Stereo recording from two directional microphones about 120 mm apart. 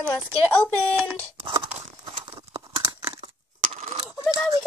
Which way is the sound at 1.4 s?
40° right (ahead or behind).